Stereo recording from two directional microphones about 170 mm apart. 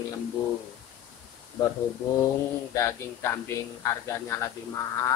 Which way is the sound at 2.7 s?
15° left (ahead or behind).